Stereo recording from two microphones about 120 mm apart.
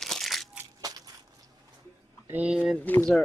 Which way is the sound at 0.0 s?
Centre (ahead or behind).